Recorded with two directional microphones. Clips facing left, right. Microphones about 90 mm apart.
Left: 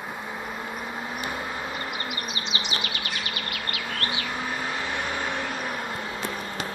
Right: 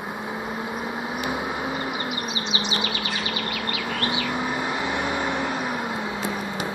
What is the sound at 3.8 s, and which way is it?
Bird, 5° right (ahead or behind).